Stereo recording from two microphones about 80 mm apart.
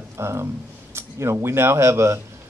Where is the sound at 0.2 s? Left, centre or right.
Right.